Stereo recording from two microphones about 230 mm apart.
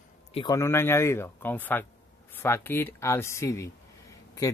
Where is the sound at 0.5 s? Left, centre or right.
Centre.